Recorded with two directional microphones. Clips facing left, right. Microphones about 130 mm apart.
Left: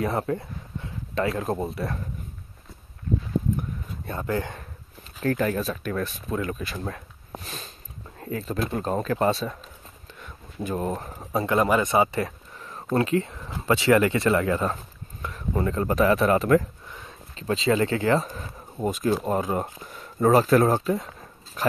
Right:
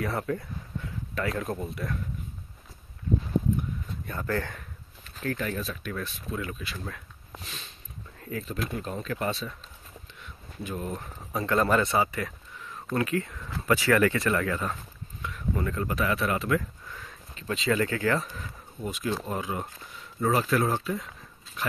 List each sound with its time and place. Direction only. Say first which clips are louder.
0.0 s speech: left 4 dB; 30° left (ahead or behind)
4.0 s speech: left 3 dB; 25° left (ahead or behind)
5.2 s speech: left 7 dB; 45° left (ahead or behind)
10.2 s a sound: left 6 dB; 45° left (ahead or behind)
11.4 s speech: left 2 dB; 15° left (ahead or behind)
12.1 s a sound: left 6 dB; 35° left (ahead or behind)
12.8 s speech: left 5 dB; 25° left (ahead or behind)
15.2 s speech: left 4 dB; 35° left (ahead or behind)
16.9 s speech: left 2 dB; 25° left (ahead or behind)
18.2 s speech: left 4 dB; 40° left (ahead or behind)